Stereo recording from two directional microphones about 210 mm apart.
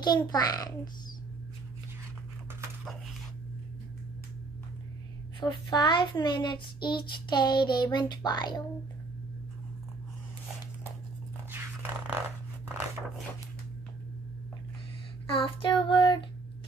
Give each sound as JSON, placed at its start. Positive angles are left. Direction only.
{"t": 0.0, "sound": "a child's voice", "side_deg": 20}
{"t": 5.4, "sound": "a child's voice", "side_deg": 20}
{"t": 11.5, "sound": "a sound", "side_deg": -10}
{"t": 15.2, "sound": "a child's voice", "side_deg": 25}